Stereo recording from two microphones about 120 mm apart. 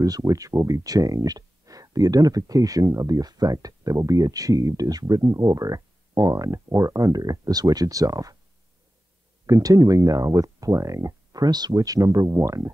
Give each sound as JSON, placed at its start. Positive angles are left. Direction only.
{"t": 0.0, "sound": "speech", "side_deg": -30}
{"t": 9.5, "sound": "speech", "side_deg": -30}